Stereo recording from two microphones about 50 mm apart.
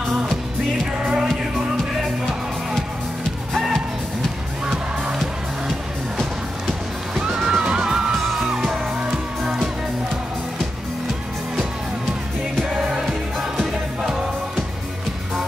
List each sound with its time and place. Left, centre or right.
0.9 s music: centre
3.5 s music: centre
7.2 s music: centre
12.5 s music: centre